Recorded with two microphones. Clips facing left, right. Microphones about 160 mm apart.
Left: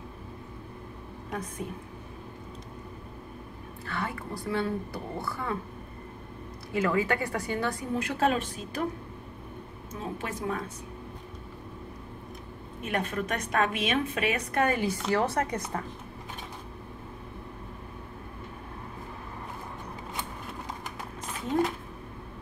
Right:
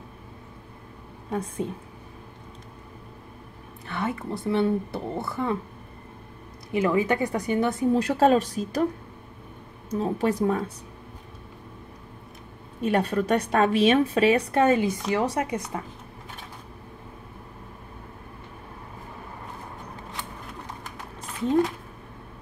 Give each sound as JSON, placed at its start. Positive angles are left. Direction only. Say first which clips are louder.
{"t": 1.3, "sound": "speech", "louder": "right 7 dB", "side_deg": -30}
{"t": 3.8, "sound": "speech", "louder": "right 5 dB", "side_deg": -20}
{"t": 6.7, "sound": "speech", "louder": "right 4 dB", "side_deg": -20}
{"t": 8.0, "sound": "a woman's voice", "louder": "right 5 dB", "side_deg": -35}
{"t": 9.8, "sound": "a woman's voice", "louder": "right 11 dB", "side_deg": -35}
{"t": 12.8, "sound": "a woman's voice", "louder": "right 7 dB", "side_deg": -35}